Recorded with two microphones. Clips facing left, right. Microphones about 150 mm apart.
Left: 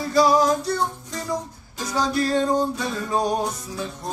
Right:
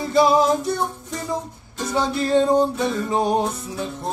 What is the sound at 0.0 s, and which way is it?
Music, 25° right (ahead or behind).